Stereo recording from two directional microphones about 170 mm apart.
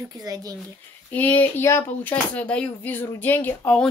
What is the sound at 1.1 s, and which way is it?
Speech, 10° left (ahead or behind).